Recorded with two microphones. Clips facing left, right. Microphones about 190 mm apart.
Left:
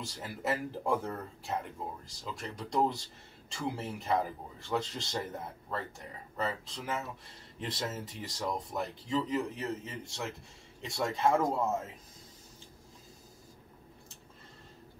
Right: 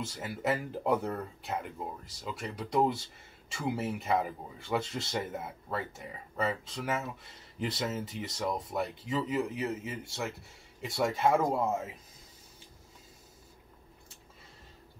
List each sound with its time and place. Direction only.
0.1 s speech: centre (ahead or behind)